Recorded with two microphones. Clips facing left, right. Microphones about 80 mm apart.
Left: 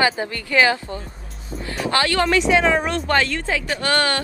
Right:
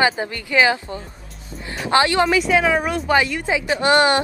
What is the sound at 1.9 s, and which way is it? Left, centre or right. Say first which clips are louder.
Speech: right 4 dB; right.